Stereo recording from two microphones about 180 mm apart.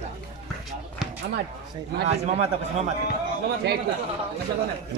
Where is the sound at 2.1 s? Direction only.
35° right (ahead or behind).